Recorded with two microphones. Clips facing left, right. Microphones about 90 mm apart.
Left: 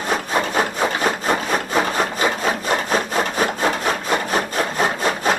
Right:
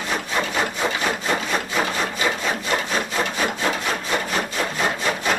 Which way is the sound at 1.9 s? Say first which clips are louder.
Left 3 dB; 40° left (ahead or behind).